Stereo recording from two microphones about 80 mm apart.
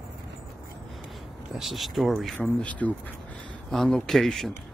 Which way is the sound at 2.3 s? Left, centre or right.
Centre.